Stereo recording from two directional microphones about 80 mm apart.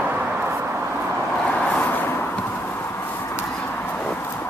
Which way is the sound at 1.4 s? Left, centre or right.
Centre.